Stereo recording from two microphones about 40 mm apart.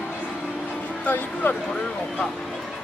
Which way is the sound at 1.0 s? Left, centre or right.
Left.